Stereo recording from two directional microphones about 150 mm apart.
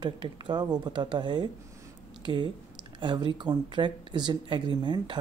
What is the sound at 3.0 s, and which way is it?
Speech, 30° right (ahead or behind).